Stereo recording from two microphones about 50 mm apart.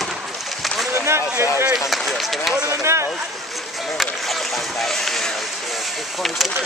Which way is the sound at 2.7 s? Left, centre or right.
Right.